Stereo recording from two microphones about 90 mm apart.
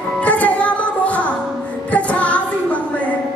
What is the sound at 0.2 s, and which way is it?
Music, 15° left (ahead or behind).